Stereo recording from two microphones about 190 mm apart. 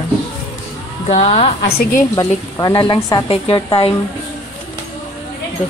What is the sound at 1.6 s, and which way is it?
Speech, 55° left (ahead or behind).